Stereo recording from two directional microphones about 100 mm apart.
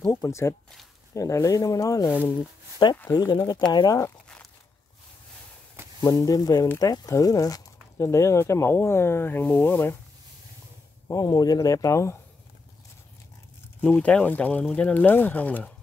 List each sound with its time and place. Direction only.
0.1 s speech: 35° left (ahead or behind)
2.0 s speech: 20° left (ahead or behind)
3.1 s speech: 45° left (ahead or behind)
6.2 s speech: 40° left (ahead or behind); by 9.9 s 20° left (ahead or behind)
11.1 s speech: 35° left (ahead or behind)
13.7 s speech: 10° left (ahead or behind)